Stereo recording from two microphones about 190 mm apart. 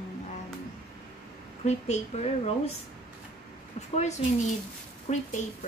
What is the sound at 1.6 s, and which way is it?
A woman's voice, 35° left (ahead or behind).